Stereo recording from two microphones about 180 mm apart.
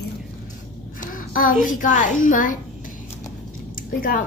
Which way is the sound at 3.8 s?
50° left (ahead or behind).